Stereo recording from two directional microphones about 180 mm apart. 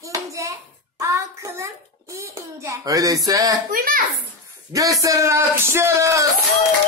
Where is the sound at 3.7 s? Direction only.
50° right (ahead or behind).